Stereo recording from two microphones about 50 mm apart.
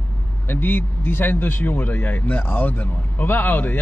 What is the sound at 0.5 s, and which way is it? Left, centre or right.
Speech, left.